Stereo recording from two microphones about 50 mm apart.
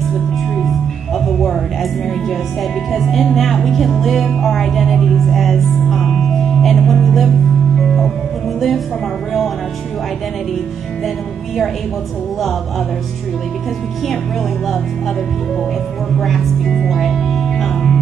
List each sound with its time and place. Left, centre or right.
1.1 s speech: centre
4.3 s music: centre
8.5 s a woman's voice: centre
12.4 s speech: centre
16.2 s speech: centre
16.8 s music: centre